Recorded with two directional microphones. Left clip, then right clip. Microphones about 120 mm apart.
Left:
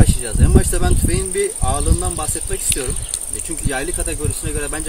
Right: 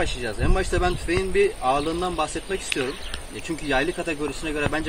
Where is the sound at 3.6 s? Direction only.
25° left (ahead or behind).